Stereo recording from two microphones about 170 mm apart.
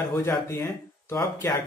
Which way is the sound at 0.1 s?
15° left (ahead or behind).